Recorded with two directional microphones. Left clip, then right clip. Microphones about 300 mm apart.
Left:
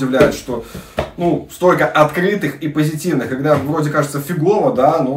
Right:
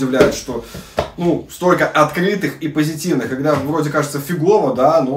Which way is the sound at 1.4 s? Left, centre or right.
Centre.